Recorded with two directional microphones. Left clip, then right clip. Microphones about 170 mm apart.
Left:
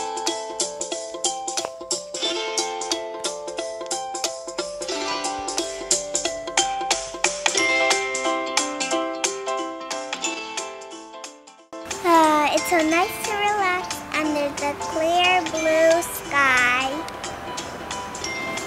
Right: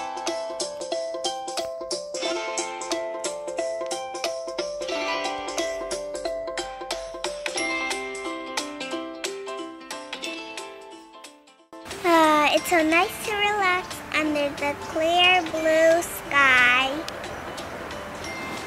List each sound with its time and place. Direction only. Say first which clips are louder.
0.3 s music: left 2 dB; 65° left (ahead or behind)
1.5 s music: left 1 dB; 25° left (ahead or behind)
2.1 s music: left 3 dB; 10° left (ahead or behind)
4.8 s music: left 1 dB; 25° left (ahead or behind)
6.1 s music: left 5 dB; 50° left (ahead or behind)
12.0 s a sound: left 1 dB; centre (ahead or behind)
13.3 s music: even; centre (ahead or behind)